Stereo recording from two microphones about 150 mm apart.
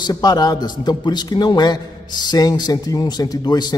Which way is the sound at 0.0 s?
25° left (ahead or behind).